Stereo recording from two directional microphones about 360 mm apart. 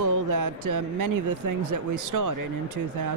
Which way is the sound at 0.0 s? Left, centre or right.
Right.